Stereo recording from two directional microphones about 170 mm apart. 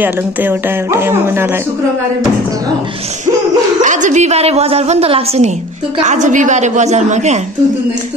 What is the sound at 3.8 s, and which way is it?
A woman's voice, 45° right (ahead or behind).